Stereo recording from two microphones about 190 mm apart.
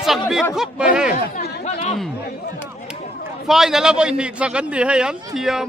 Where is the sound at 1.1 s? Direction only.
45° left (ahead or behind).